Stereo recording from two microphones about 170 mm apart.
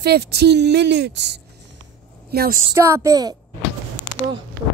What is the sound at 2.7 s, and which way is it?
Speech, 20° right (ahead or behind).